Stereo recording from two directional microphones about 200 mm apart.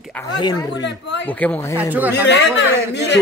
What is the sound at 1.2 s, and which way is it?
Speech, 10° left (ahead or behind).